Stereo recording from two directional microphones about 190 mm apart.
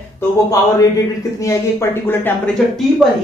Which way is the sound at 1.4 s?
15° left (ahead or behind).